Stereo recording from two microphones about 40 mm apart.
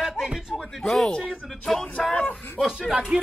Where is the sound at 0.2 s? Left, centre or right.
Centre.